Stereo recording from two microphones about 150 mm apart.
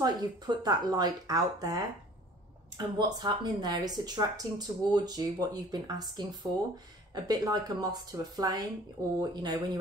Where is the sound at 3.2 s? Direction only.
25° right (ahead or behind).